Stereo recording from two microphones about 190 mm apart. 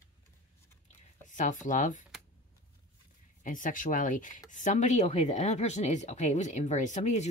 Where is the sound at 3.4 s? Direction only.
45° left (ahead or behind).